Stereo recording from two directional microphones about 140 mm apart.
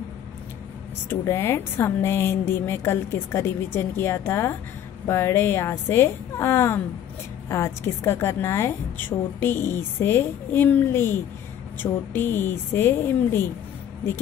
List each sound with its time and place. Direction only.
1.0 s a woman's voice: 20° left (ahead or behind)